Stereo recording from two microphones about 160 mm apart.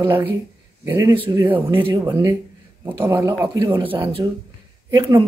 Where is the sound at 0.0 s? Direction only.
10° right (ahead or behind).